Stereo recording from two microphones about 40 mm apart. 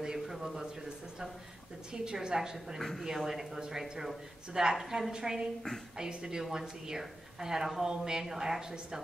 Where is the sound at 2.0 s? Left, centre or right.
Centre.